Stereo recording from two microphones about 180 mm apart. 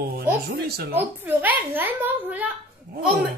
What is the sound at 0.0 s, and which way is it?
Speech, 55° right (ahead or behind).